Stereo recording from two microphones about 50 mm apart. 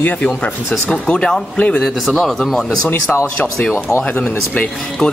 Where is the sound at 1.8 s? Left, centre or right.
Centre.